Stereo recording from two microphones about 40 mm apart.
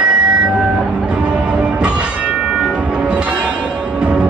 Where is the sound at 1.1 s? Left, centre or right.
Right.